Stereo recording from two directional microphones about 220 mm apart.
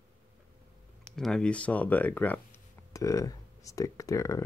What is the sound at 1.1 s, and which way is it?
Speech, 5° left (ahead or behind).